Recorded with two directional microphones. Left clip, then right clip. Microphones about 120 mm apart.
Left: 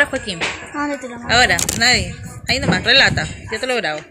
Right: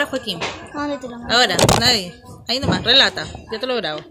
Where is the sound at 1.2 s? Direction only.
5° right (ahead or behind).